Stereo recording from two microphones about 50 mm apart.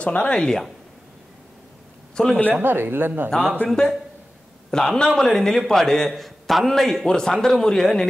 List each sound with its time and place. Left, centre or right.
0.0 s speech: left
0.3 s a man's voice: centre
2.2 s a man's voice: centre
2.5 s speech: right
3.3 s a man's voice: centre